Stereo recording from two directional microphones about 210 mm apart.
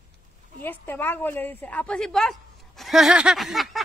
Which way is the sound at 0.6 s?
10° left (ahead or behind).